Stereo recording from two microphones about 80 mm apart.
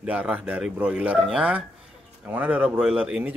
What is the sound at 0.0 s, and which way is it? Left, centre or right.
Speech, centre.